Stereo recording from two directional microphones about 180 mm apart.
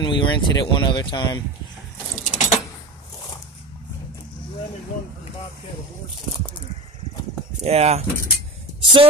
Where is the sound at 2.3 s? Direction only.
45° left (ahead or behind).